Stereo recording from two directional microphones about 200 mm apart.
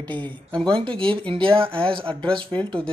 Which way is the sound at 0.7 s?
25° right (ahead or behind).